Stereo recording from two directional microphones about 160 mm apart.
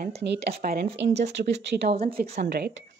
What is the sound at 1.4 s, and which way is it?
Speech, 90° right.